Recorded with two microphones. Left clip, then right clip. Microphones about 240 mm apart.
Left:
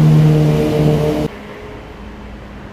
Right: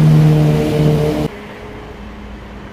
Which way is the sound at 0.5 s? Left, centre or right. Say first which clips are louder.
Left 1 dB; right.